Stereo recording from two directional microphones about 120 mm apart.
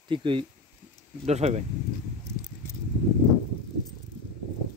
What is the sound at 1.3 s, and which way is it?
Speech, 65° right (ahead or behind).